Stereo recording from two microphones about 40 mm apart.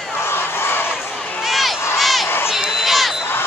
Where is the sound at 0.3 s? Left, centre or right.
Left.